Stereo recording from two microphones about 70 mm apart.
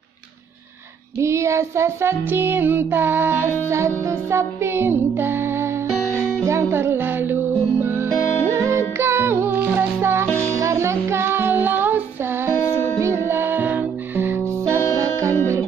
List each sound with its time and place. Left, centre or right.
1.2 s music: right
8.5 s music: right
13.0 s music: right